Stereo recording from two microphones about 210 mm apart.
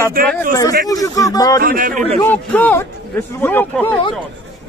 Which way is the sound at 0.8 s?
15° left (ahead or behind).